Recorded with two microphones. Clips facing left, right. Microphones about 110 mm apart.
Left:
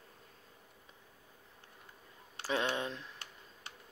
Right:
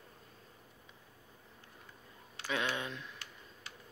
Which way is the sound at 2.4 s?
35° left (ahead or behind).